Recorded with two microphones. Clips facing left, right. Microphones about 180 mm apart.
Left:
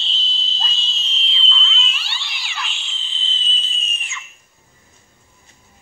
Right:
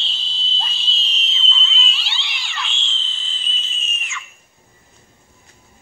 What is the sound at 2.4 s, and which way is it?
Cat, 5° left (ahead or behind).